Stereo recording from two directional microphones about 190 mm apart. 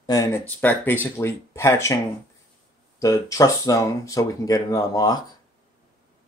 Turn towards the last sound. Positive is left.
turn(degrees=20)  # may be behind; listen again after turning